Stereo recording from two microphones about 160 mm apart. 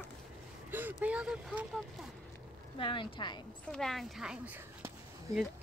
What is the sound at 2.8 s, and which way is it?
Speech, 30° left (ahead or behind).